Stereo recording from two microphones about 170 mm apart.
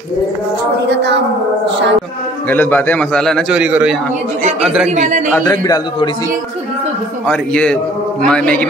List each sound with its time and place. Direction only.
2.5 s a man's voice: 10° left (ahead or behind); by 4.8 s 5° right (ahead or behind)
4.8 s a man's voice: 45° right (ahead or behind)
5.3 s a man's voice: 20° left (ahead or behind)
7.2 s a man's voice: 5° left (ahead or behind)